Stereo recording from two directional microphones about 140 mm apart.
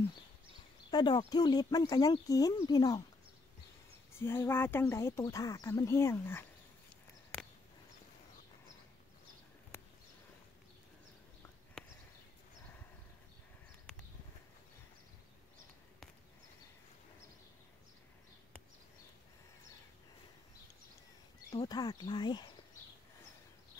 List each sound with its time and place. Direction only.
0.8 s speech: 30° left (ahead or behind)
4.2 s speech: 15° left (ahead or behind)
21.6 s speech: 25° left (ahead or behind)